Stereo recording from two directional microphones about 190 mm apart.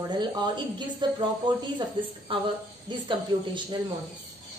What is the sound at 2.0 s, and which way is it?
A woman's voice, 25° right (ahead or behind).